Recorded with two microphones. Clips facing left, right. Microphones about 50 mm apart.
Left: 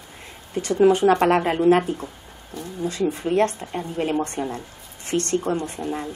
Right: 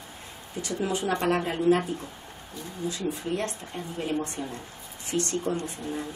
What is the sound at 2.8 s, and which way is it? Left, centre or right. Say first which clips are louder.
Speech: left 7 dB; left.